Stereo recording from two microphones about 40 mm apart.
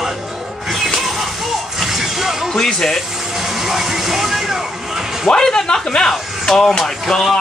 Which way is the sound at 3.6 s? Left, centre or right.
Centre.